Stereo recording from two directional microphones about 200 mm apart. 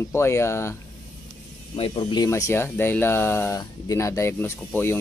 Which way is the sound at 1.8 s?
25° left (ahead or behind).